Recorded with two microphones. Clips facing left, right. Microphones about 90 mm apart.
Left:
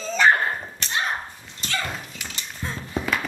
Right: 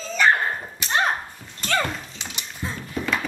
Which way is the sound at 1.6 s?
50° right (ahead or behind).